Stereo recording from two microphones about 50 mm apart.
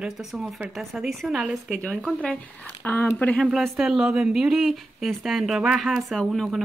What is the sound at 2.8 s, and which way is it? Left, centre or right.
Speech, left.